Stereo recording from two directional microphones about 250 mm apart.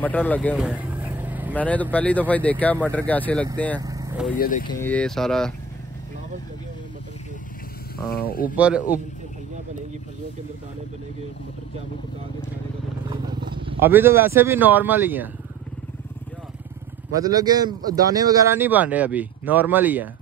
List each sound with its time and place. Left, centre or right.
0.0 s speech: centre
0.6 s vehicle: centre
1.5 s speech: centre
3.8 s vehicle: centre
4.4 s speech: left
4.6 s speech: centre
8.1 s speech: left
8.5 s speech: centre
13.1 s a sound: centre
13.7 s speech: centre
17.1 s speech: centre